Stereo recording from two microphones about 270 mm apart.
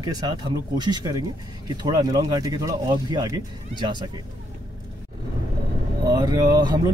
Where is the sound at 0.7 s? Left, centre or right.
Centre.